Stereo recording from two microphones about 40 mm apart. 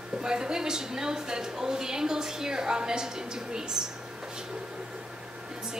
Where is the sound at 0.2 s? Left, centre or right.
Centre.